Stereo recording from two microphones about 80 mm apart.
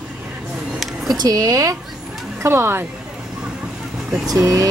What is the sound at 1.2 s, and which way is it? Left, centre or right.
Speech, right.